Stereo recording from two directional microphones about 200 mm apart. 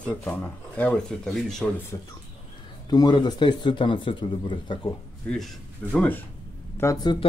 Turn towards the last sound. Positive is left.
turn(degrees=20)  # may be behind; listen again after turning